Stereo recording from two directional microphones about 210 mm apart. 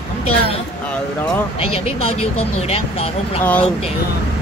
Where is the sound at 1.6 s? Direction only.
30° left (ahead or behind).